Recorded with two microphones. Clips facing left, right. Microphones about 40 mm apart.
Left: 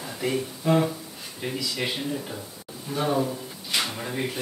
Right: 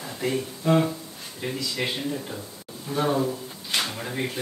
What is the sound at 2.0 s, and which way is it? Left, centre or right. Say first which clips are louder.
Speech: even; centre.